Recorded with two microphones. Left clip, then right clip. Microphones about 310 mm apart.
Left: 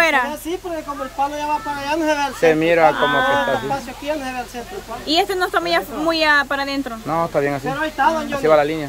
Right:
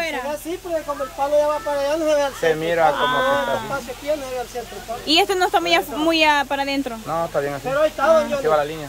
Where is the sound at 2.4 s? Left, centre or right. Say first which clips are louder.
Left 4 dB; left.